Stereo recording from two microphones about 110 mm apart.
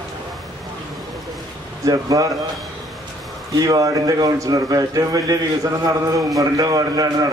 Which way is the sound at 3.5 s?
35° right (ahead or behind).